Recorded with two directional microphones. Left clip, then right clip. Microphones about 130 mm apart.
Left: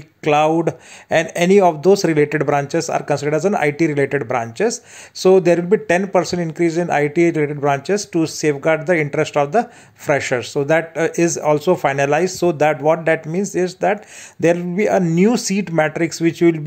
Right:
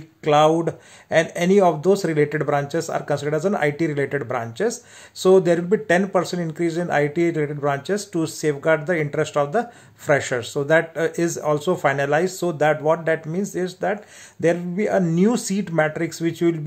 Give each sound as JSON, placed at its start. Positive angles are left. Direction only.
{"t": 0.2, "sound": "speech", "side_deg": 25}